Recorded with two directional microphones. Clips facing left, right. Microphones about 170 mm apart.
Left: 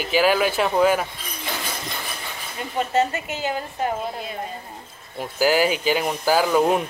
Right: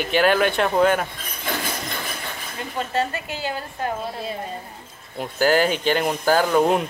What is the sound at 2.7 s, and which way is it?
A woman's voice, 20° left (ahead or behind).